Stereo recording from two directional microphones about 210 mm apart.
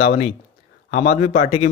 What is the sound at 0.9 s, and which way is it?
Speech, 30° left (ahead or behind).